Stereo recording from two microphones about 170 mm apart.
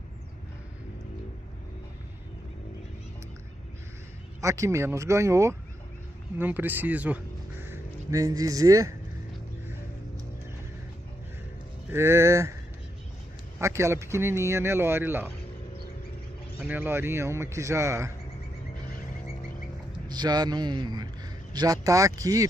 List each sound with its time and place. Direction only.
4.4 s speech: 20° right (ahead or behind)
11.9 s speech: 15° right (ahead or behind)
13.6 s speech: 15° right (ahead or behind)
16.6 s speech: 10° right (ahead or behind)
20.1 s a man's voice: 25° right (ahead or behind)